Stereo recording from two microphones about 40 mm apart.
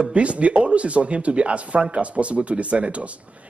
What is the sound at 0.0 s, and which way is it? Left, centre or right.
A man's voice, right.